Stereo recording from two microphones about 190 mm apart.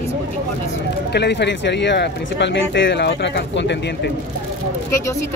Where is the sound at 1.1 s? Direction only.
65° left (ahead or behind).